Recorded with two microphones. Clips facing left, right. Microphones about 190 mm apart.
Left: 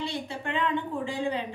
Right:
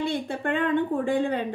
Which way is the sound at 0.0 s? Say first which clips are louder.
Right 6 dB; 55° right (ahead or behind).